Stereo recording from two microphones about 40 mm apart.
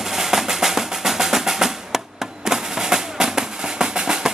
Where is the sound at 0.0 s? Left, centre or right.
Centre.